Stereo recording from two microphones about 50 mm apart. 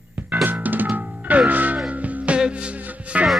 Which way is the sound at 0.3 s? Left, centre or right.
Right.